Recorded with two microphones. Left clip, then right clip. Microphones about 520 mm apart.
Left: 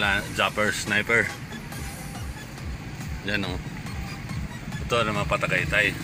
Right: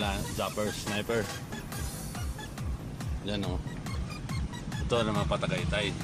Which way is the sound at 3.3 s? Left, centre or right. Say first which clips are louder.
Left 7 dB; right.